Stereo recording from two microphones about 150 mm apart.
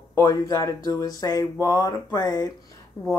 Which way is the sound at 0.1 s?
25° left (ahead or behind).